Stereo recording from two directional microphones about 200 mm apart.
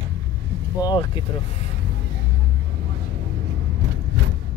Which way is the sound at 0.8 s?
25° left (ahead or behind).